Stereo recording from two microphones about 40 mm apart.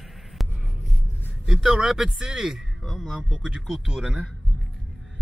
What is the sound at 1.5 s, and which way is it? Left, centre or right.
Speech, centre.